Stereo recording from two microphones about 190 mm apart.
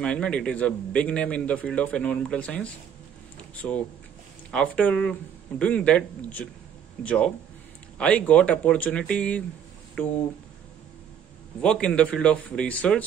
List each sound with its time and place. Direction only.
0.0 s a man's voice: 5° left (ahead or behind)
11.6 s a man's voice: 5° left (ahead or behind)